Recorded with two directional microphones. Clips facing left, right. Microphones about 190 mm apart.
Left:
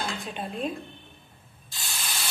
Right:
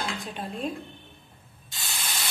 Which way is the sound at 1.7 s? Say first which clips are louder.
Right 1 dB; 20° right (ahead or behind).